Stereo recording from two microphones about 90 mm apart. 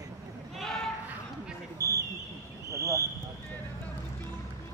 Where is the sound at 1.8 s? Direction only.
35° right (ahead or behind).